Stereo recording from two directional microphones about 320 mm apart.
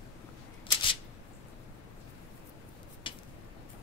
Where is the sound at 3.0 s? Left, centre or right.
Centre.